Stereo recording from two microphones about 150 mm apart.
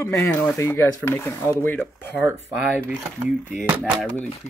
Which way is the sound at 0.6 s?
15° left (ahead or behind).